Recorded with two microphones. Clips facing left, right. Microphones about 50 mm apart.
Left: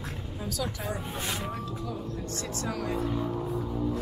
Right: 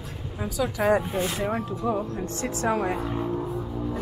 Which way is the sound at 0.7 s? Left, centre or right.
Right.